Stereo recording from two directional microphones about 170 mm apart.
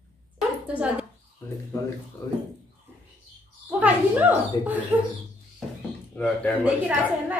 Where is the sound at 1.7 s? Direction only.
20° left (ahead or behind).